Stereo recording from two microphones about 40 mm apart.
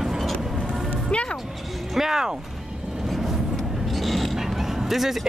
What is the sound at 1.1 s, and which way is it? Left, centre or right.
Music, left.